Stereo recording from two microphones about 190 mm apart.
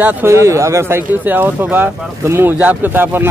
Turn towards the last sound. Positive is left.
turn(degrees=-10)  # may be behind; listen again after turning